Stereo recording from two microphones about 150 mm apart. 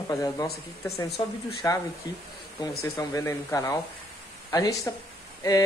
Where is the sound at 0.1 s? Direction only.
20° left (ahead or behind).